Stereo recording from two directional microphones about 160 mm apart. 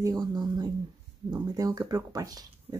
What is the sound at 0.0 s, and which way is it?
Speech, 25° right (ahead or behind).